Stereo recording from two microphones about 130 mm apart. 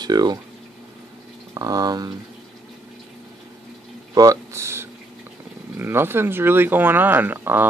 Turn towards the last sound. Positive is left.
turn(degrees=-15)  # may be behind; listen again after turning